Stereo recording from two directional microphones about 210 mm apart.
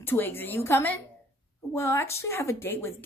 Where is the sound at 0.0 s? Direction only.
10° left (ahead or behind).